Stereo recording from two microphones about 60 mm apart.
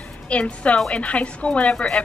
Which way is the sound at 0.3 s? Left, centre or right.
Left.